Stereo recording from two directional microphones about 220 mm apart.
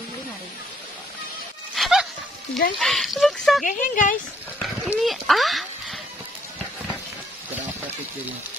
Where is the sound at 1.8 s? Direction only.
Centre (ahead or behind).